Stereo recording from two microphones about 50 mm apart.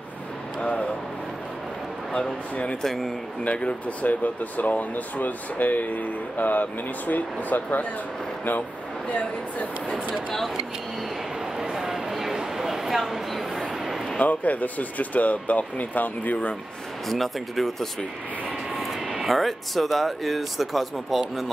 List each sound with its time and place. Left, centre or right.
0.6 s a sound: left
2.5 s speech: left
2.8 s speech: centre
3.4 s speech: left
11.5 s a sound: centre
14.2 s speech: left
17.1 s speech: centre